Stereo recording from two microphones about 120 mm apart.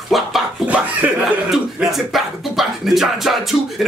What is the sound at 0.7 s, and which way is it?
Speech, 10° right (ahead or behind).